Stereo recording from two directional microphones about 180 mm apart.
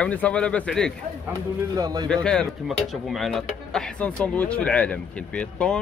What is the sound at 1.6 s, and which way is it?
Speech, 20° right (ahead or behind).